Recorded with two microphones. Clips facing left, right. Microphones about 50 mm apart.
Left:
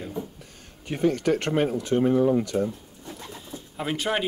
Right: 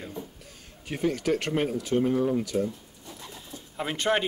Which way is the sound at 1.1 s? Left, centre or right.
Centre.